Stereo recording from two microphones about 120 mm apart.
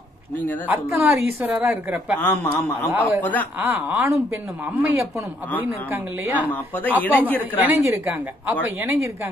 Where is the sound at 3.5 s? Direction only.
15° right (ahead or behind).